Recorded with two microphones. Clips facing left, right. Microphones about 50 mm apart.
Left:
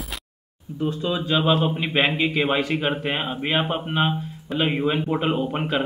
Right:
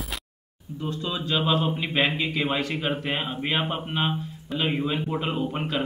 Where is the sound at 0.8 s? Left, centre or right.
Centre.